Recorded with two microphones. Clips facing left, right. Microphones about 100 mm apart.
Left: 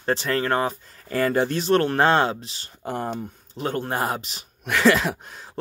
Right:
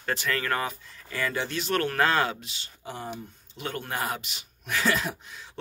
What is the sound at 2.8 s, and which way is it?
Speech, 55° left (ahead or behind).